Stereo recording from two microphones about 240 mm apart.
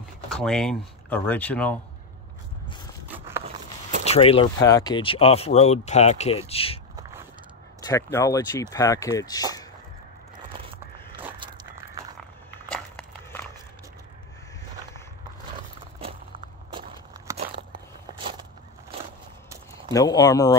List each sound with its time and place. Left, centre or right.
0.4 s speech: centre
4.0 s speech: left
7.9 s speech: centre
11.3 s a sound: centre
12.7 s a sound: centre
16.7 s walk: centre
17.7 s biting: centre
19.9 s speech: centre